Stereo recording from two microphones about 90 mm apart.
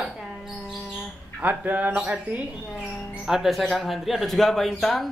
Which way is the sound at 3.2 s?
Centre (ahead or behind).